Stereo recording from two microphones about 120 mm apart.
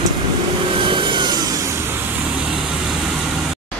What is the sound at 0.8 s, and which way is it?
Rub, 45° right (ahead or behind).